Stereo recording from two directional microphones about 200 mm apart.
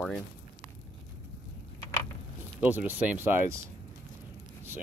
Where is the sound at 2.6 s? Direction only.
10° right (ahead or behind).